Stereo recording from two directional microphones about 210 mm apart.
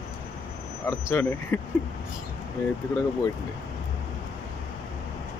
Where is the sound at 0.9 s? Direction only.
15° left (ahead or behind).